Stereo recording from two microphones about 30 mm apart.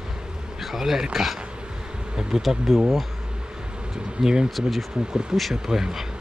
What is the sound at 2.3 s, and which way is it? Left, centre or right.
Speech, right.